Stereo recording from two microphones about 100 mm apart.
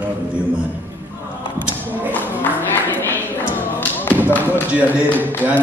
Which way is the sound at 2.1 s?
20° left (ahead or behind).